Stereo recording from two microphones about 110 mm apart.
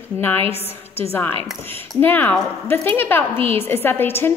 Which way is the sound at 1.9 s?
20° left (ahead or behind).